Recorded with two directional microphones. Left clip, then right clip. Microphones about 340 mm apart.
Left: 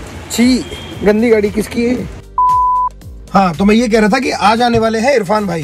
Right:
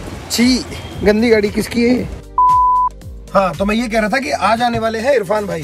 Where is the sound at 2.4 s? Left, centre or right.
Centre.